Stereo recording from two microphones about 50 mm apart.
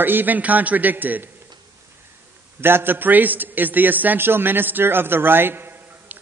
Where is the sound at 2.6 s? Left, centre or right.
Right.